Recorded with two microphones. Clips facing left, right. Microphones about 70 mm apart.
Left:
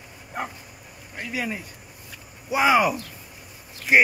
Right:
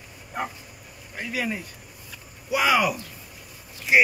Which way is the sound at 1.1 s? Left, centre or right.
Centre.